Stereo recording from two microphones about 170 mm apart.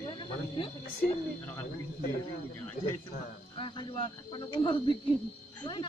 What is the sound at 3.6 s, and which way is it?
Speech, 30° left (ahead or behind).